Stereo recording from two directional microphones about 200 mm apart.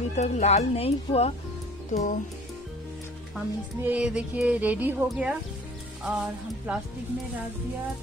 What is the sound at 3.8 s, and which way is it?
Speech, 5° right (ahead or behind).